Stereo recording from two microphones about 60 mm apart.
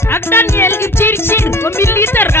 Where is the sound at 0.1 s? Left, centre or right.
Left.